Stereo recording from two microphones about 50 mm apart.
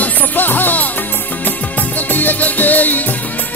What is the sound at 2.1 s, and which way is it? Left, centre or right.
Music, left.